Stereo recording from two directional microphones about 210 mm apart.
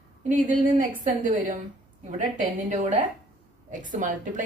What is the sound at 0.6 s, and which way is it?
Speech, 40° right (ahead or behind).